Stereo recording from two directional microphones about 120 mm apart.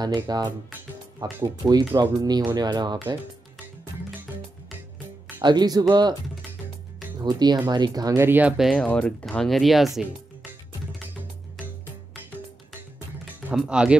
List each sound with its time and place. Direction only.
0.0 s speech: 35° right (ahead or behind)
5.4 s speech: 35° right (ahead or behind)
7.2 s speech: 35° right (ahead or behind)
8.3 s speech: 15° right (ahead or behind)
8.5 s speech: centre (ahead or behind)
8.8 s speech: 10° left (ahead or behind)
13.7 s speech: 10° right (ahead or behind)